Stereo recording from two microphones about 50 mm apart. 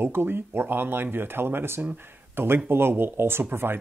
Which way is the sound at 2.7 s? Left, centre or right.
Right.